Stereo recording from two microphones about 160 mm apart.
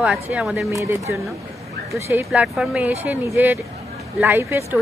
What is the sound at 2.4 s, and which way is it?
Speech, 5° right (ahead or behind).